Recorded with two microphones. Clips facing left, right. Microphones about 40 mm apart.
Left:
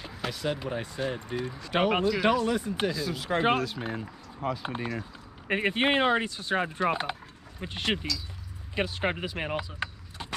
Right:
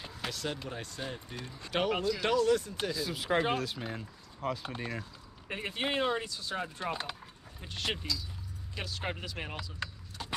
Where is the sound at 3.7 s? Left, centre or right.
Centre.